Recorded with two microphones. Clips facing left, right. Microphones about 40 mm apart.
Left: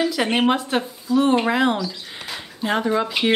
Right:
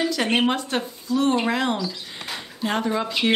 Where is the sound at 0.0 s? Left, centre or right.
Centre.